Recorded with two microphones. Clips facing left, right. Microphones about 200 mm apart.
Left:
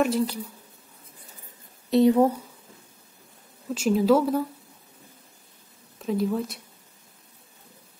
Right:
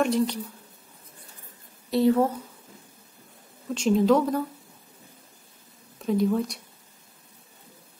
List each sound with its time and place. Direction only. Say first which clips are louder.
0.0 s a woman's voice: even; 5° left (ahead or behind)
1.9 s speech: left 3 dB; 20° left (ahead or behind)
3.7 s a woman's voice: even; 5° left (ahead or behind)
5.9 s speech: right 2 dB; centre (ahead or behind)